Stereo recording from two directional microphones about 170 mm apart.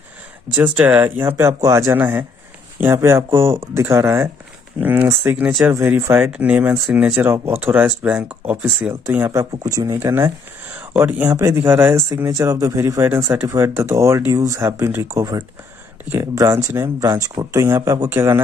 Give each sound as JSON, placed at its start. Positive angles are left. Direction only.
{"t": 0.6, "sound": "speech", "side_deg": -10}